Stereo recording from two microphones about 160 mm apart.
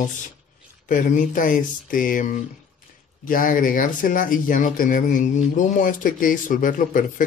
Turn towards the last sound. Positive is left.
turn(degrees=55)  # may be behind; listen again after turning